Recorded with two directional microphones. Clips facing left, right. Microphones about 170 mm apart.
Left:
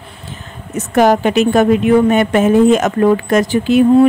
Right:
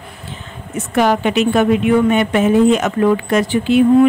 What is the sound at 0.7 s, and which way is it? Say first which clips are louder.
A woman's voice: left 4 dB; 40° left (ahead or behind).